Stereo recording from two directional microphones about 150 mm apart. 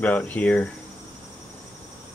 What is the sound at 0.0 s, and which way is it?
Speech, 10° left (ahead or behind).